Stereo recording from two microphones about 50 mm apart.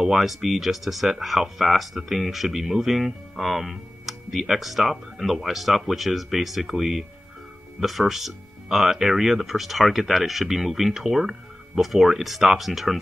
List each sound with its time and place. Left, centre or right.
0.0 s speech: centre